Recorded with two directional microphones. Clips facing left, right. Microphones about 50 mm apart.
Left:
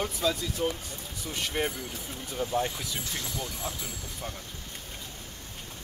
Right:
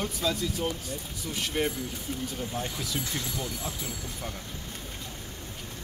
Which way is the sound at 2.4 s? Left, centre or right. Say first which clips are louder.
Left 5 dB; centre.